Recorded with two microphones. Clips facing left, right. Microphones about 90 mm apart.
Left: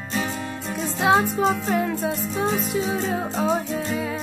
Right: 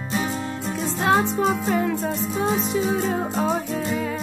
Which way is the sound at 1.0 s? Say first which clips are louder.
Left 1 dB; 5° left (ahead or behind).